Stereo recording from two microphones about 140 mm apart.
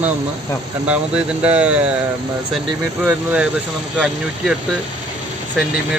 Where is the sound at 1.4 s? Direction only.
10° right (ahead or behind).